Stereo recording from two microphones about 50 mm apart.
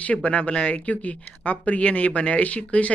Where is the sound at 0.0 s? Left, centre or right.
Left.